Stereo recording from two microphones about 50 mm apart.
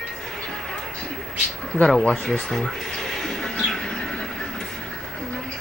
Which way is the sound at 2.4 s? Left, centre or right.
Centre.